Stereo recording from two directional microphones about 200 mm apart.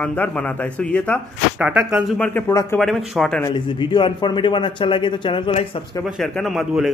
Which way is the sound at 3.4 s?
20° left (ahead or behind).